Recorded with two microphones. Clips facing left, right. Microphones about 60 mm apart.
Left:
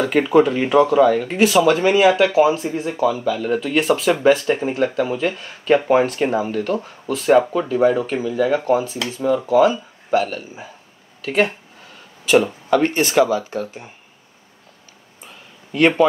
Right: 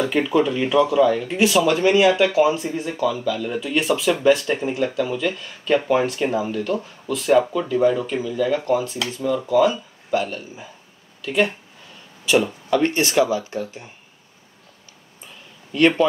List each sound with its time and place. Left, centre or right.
0.0 s speech: left
7.5 s speech: left
12.6 s speech: left
15.7 s speech: centre